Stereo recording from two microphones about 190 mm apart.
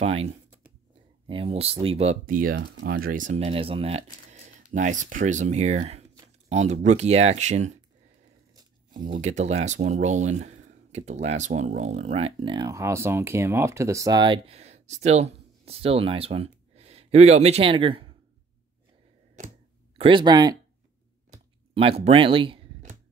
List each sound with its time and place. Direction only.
0.0 s speech: 30° right (ahead or behind)
2.5 s speech: 65° right (ahead or behind); by 7.8 s 40° right (ahead or behind)
8.5 s tearing: 20° right (ahead or behind)
9.2 s speech: 35° right (ahead or behind)
19.4 s a sound: 40° right (ahead or behind)
20.0 s speech: 25° right (ahead or behind)
21.7 s speech: 30° right (ahead or behind)